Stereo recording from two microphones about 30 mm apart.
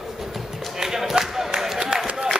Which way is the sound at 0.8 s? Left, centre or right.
Centre.